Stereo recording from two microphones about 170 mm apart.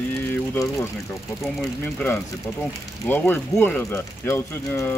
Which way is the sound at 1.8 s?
10° left (ahead or behind).